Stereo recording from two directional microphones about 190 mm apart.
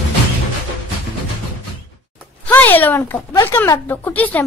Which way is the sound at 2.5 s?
10° left (ahead or behind).